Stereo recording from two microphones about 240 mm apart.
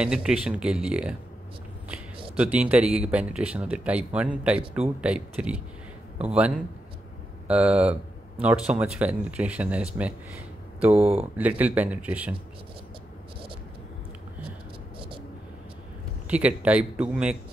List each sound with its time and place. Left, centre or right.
0.0 s speech: centre
2.3 s speech: centre
10.9 s speech: right
11.3 s speech: centre
16.3 s speech: centre